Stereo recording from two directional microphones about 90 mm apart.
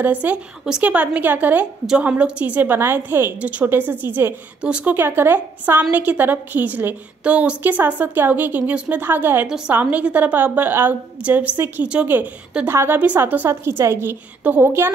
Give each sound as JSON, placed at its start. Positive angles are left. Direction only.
{"t": 0.0, "sound": "a woman's voice", "side_deg": -15}
{"t": 4.6, "sound": "a woman's voice", "side_deg": -10}